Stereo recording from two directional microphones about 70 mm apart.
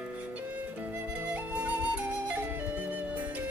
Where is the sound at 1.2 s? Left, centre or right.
Right.